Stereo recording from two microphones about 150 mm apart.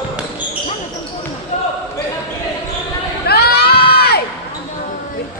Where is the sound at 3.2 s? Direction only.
90° left.